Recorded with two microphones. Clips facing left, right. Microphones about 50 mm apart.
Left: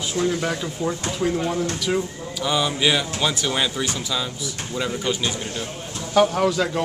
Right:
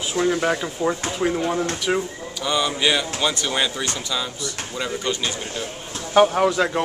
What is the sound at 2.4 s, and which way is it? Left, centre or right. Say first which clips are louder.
Speech: even; centre.